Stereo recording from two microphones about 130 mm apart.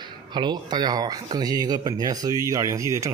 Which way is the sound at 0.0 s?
35° right (ahead or behind).